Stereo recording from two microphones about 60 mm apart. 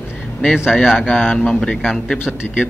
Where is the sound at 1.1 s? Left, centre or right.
Left.